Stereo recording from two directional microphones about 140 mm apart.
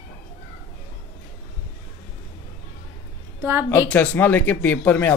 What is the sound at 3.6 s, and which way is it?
A woman's voice, 10° left (ahead or behind).